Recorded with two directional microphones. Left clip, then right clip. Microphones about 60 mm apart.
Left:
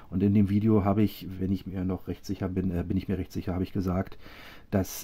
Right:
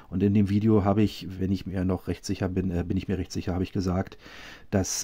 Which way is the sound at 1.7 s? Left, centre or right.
Right.